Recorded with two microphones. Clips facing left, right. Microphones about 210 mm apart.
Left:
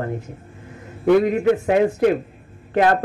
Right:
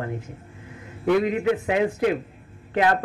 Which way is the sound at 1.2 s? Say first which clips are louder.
Left 5 dB; 45° left (ahead or behind).